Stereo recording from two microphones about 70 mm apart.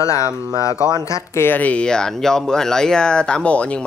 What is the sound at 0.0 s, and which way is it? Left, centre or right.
Speech, left.